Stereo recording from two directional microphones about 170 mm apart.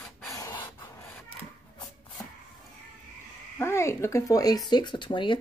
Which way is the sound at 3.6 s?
15° left (ahead or behind).